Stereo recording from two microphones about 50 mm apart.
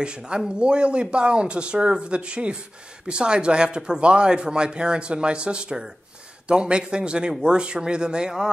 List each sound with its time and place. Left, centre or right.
0.0 s a man's voice: centre